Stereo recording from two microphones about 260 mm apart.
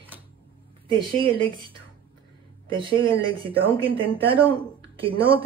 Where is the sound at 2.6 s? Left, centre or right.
Centre.